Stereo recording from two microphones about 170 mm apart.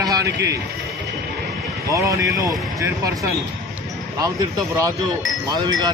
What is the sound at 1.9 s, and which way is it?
Speech, 20° right (ahead or behind).